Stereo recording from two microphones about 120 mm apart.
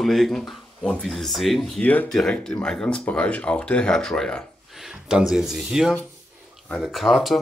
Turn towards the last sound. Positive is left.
turn(degrees=0)  # may be behind; listen again after turning